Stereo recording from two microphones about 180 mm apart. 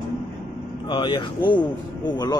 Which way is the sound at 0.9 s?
25° left (ahead or behind).